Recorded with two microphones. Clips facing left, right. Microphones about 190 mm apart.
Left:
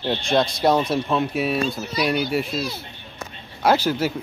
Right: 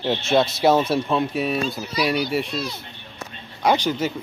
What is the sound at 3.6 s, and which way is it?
Speech, 5° left (ahead or behind).